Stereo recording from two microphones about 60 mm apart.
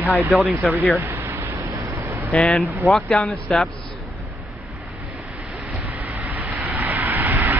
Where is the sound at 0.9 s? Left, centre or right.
Right.